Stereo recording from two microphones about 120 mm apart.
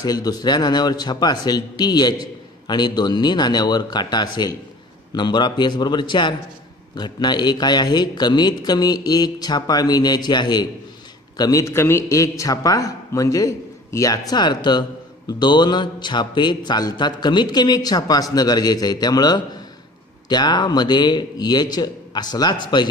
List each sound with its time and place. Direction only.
0.0 s a man's voice: 30° left (ahead or behind)